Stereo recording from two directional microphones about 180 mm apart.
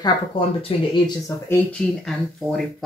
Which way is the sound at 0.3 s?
30° left (ahead or behind).